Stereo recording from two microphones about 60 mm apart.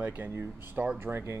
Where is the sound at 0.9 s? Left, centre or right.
Right.